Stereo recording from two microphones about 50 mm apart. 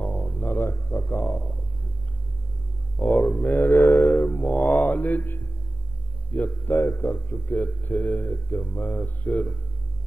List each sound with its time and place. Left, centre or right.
0.0 s a sound: left
3.0 s mantra: left
6.3 s a man's voice: left